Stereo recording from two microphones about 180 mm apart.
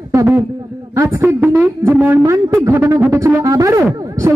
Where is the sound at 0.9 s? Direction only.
15° right (ahead or behind).